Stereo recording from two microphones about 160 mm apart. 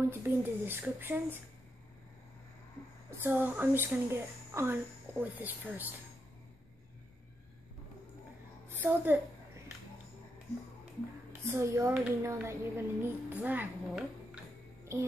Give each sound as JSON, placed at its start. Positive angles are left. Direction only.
{"t": 0.1, "sound": "a woman's voice", "side_deg": -15}
{"t": 3.2, "sound": "a woman's voice", "side_deg": -10}
{"t": 8.8, "sound": "a woman's voice", "side_deg": -10}
{"t": 11.4, "sound": "a woman's voice", "side_deg": -15}